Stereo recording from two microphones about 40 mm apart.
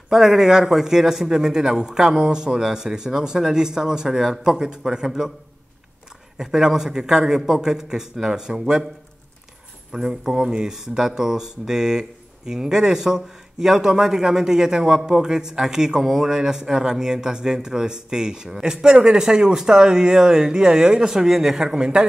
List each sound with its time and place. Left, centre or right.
0.1 s speech: centre
6.3 s speech: centre
9.9 s speech: centre